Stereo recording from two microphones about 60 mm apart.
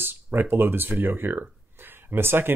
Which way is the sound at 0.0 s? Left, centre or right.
Right.